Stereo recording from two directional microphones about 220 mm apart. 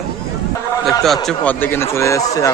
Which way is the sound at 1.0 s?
Centre (ahead or behind).